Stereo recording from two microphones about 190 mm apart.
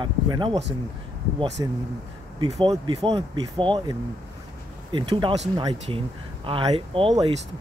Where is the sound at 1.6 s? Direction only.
20° right (ahead or behind).